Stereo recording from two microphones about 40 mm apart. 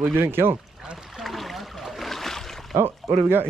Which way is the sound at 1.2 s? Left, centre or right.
Centre.